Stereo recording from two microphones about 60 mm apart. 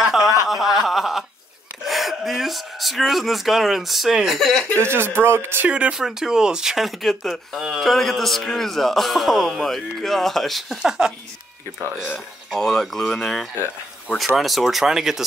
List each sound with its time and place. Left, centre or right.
0.0 s a sound: centre
1.9 s speech: centre
4.7 s speech: right
5.7 s speech: right
5.9 s speech: centre
10.8 s speech: centre
12.5 s speech: centre